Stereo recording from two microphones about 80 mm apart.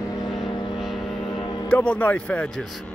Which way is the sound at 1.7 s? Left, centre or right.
Centre.